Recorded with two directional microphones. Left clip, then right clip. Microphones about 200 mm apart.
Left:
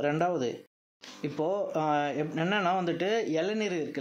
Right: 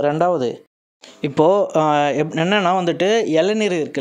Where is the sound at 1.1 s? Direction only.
45° right (ahead or behind).